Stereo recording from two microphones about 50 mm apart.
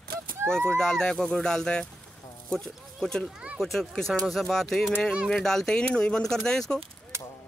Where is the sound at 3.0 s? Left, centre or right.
Centre.